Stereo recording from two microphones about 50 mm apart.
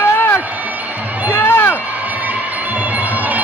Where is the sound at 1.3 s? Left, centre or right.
Left.